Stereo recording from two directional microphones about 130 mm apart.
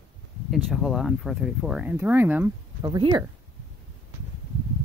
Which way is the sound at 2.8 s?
35° right (ahead or behind).